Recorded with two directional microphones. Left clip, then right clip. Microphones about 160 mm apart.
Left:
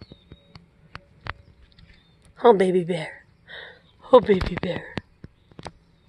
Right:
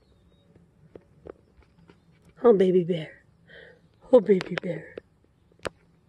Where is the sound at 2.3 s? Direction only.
35° right (ahead or behind).